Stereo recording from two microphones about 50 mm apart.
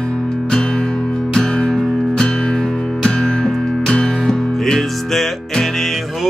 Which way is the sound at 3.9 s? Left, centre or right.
Centre.